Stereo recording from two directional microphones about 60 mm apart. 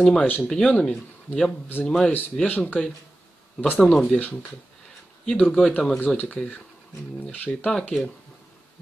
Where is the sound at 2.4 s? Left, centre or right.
Left.